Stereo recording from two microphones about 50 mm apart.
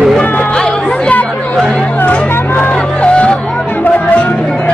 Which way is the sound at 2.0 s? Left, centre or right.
Left.